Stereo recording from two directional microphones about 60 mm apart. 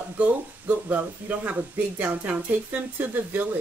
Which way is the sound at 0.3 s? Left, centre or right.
Right.